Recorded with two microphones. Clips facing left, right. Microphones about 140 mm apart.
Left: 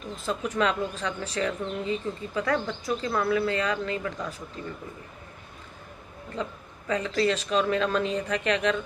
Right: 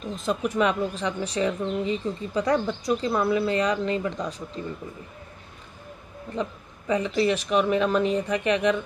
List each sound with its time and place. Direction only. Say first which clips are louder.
0.0 s speech: right 4 dB; 20° right (ahead or behind)
6.9 s speech: right 2 dB; 15° right (ahead or behind)